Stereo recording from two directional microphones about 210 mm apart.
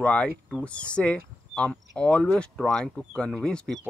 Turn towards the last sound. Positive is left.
turn(degrees=5)  # may be behind; listen again after turning